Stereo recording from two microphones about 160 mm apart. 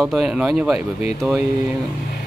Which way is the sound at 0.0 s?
Centre (ahead or behind).